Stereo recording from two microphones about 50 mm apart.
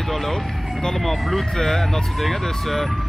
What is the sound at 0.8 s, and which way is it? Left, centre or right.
Speech, centre.